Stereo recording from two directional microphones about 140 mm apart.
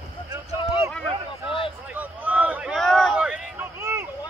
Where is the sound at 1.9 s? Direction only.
10° right (ahead or behind).